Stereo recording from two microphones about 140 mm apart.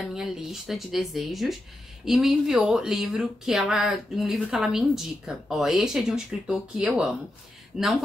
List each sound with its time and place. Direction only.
0.0 s speech: 5° right (ahead or behind)